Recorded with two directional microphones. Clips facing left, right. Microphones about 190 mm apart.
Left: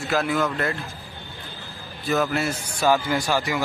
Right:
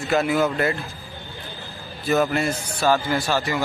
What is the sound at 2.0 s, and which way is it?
Speech, centre (ahead or behind).